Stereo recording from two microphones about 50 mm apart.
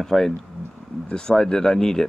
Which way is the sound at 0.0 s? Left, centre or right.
Centre.